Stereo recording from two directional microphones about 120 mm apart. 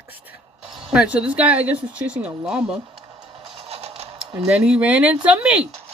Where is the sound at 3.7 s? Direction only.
60° right (ahead or behind).